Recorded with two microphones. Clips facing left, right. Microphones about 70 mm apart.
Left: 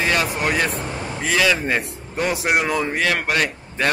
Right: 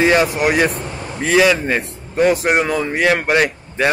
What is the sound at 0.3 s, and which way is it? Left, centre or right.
Speech, centre.